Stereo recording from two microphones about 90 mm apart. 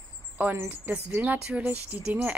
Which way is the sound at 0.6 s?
20° right (ahead or behind).